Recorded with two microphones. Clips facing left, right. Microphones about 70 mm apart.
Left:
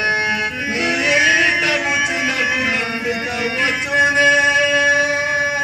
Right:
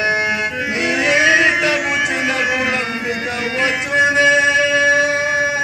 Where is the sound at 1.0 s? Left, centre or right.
Right.